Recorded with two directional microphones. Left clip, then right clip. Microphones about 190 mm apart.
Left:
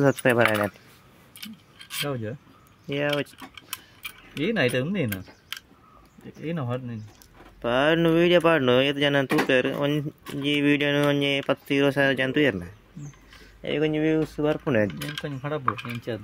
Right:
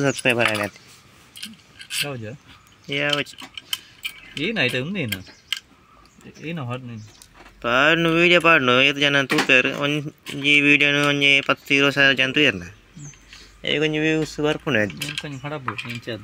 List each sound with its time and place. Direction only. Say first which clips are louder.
0.0 s speech: right 1 dB; 15° left (ahead or behind)
2.0 s speech: right 2 dB; 30° left (ahead or behind)
2.9 s speech: right 4 dB; 15° left (ahead or behind)
6.4 s speech: even; 20° left (ahead or behind)
7.6 s speech: right 4 dB; 10° left (ahead or behind)